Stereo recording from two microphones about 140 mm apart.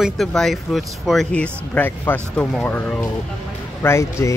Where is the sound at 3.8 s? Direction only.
20° left (ahead or behind).